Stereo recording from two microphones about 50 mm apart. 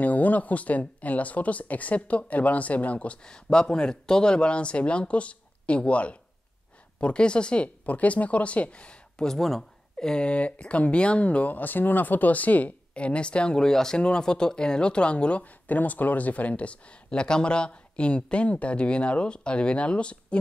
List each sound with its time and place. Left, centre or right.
0.0 s speech: left
3.3 s speech: centre
9.2 s speech: centre
13.7 s speech: centre